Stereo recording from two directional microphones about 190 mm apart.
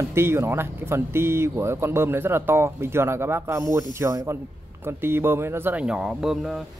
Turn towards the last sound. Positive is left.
turn(degrees=0)  # may be behind; listen again after turning